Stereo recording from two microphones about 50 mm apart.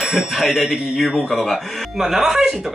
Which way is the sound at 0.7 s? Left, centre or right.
Centre.